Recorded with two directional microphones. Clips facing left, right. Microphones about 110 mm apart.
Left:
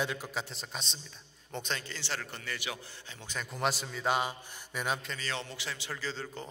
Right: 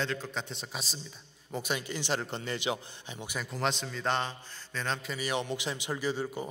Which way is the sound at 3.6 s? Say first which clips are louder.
Even; 5° left (ahead or behind).